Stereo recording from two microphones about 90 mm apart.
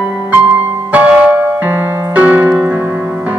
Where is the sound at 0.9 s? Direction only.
15° right (ahead or behind).